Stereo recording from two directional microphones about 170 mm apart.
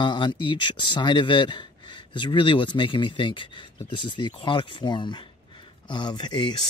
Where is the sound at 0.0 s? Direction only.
30° left (ahead or behind).